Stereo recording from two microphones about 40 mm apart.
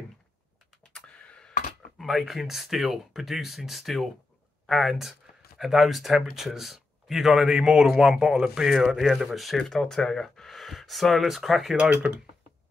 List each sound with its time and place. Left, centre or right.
0.9 s a sound: left
2.0 s speech: centre
8.5 s speech: centre
9.6 s speech: centre
12.1 s speech: right